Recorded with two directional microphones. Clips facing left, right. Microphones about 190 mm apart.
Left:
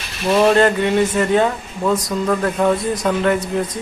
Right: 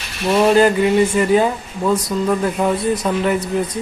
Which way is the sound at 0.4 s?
5° right (ahead or behind).